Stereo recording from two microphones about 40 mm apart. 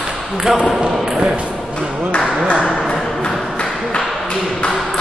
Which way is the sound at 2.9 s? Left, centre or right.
Centre.